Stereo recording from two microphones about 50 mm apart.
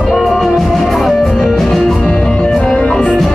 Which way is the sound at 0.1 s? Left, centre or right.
Centre.